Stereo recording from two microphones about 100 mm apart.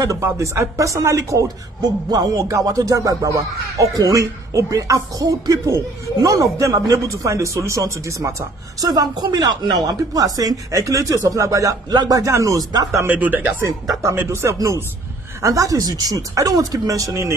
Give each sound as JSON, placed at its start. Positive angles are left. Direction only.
{"t": 0.0, "sound": "speech", "side_deg": -35}
{"t": 13.0, "sound": "speech", "side_deg": -15}
{"t": 13.6, "sound": "speech", "side_deg": -35}